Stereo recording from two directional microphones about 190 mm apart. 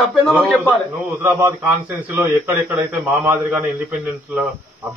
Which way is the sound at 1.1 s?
15° right (ahead or behind).